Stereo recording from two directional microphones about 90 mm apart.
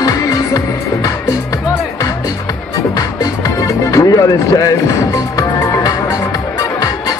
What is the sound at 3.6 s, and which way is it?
Music, 40° left (ahead or behind).